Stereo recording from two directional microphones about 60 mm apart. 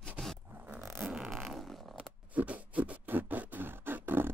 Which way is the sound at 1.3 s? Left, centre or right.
Centre.